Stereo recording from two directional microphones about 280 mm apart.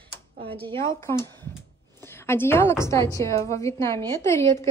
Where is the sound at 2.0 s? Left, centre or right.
Centre.